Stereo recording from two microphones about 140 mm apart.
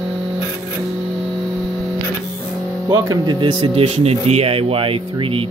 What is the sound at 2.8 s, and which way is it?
Speech, 25° right (ahead or behind).